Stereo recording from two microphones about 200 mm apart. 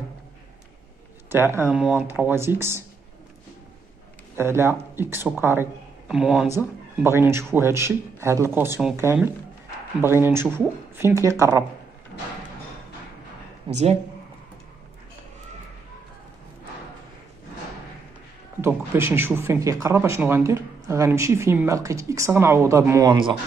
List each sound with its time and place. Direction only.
1.3 s speech: 10° right (ahead or behind)
4.4 s speech: 10° right (ahead or behind)
13.7 s speech: 25° right (ahead or behind)
18.6 s speech: 10° right (ahead or behind)